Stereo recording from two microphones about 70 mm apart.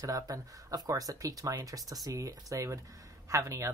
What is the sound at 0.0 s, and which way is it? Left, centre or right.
Speech, right.